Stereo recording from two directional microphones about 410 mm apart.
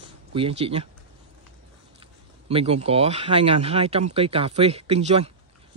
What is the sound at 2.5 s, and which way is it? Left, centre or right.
Speech, centre.